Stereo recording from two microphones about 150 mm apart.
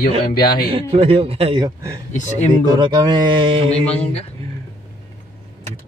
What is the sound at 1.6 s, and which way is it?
Speech, 20° right (ahead or behind).